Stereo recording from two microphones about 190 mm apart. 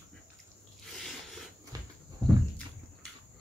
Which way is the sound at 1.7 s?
20° right (ahead or behind).